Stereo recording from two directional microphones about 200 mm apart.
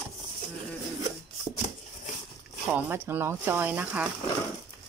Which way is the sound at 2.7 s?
10° right (ahead or behind).